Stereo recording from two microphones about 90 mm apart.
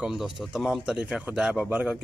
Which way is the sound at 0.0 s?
Centre (ahead or behind).